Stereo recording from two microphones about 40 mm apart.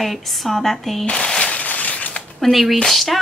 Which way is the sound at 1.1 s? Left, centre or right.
Centre.